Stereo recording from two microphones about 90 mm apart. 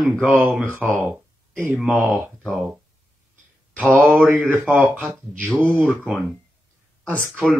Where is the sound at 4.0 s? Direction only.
20° right (ahead or behind).